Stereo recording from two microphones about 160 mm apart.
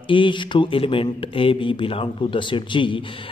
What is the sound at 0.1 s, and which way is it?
Speech, 30° left (ahead or behind).